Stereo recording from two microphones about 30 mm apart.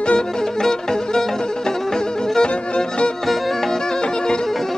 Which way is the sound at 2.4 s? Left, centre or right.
Left.